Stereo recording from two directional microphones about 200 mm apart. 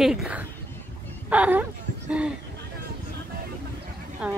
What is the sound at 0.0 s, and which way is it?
A woman's voice, centre (ahead or behind).